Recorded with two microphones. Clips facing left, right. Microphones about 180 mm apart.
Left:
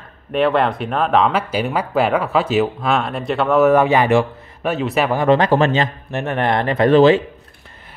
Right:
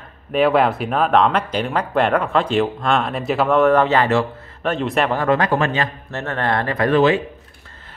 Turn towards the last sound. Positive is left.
turn(degrees=30)  # may be behind; listen again after turning